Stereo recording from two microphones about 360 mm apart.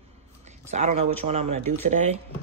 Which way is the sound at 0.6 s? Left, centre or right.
Centre.